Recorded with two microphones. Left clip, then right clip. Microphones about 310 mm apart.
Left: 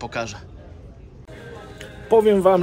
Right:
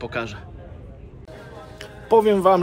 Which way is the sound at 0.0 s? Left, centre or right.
Centre.